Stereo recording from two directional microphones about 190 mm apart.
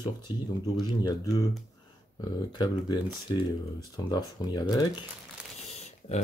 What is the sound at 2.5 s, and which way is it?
Speech, 20° left (ahead or behind).